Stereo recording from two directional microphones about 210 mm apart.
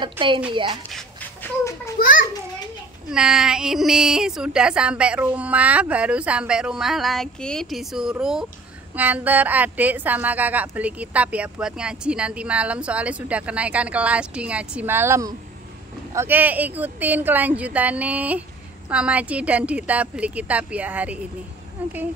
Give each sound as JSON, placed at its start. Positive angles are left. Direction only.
{"t": 0.2, "sound": "a woman's voice", "side_deg": -10}
{"t": 0.5, "sound": "a woman's voice", "side_deg": -25}
{"t": 0.9, "sound": "a sound", "side_deg": 10}
{"t": 2.0, "sound": "a child's voice", "side_deg": 40}
{"t": 3.1, "sound": "a woman's voice", "side_deg": -5}